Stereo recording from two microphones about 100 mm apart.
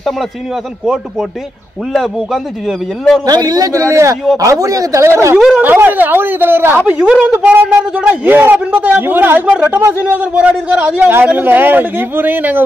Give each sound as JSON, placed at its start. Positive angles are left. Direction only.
{"t": 3.3, "sound": "a man's voice", "side_deg": -40}